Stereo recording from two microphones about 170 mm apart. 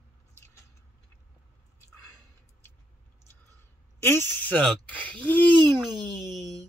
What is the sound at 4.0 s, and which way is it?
Speech, 15° left (ahead or behind).